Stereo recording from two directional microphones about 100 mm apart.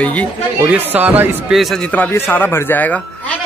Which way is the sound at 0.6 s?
15° right (ahead or behind).